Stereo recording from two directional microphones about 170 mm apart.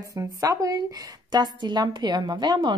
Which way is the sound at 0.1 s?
20° right (ahead or behind).